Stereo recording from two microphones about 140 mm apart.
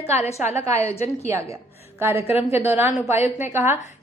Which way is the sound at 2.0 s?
15° right (ahead or behind).